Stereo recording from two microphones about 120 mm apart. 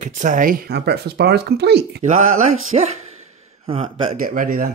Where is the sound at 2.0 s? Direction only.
90° right.